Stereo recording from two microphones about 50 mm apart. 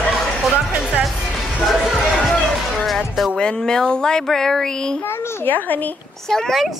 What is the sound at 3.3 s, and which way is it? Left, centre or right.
A child's voice, centre.